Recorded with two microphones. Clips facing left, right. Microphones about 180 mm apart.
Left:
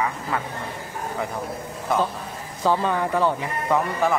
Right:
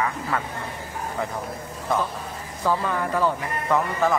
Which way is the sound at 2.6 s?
20° left (ahead or behind).